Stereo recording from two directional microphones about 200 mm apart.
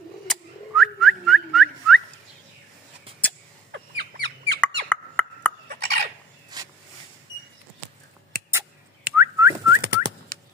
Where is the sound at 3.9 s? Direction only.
60° right (ahead or behind).